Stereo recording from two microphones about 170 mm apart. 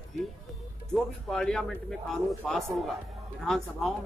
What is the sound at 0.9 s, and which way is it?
A man's voice, 5° left (ahead or behind).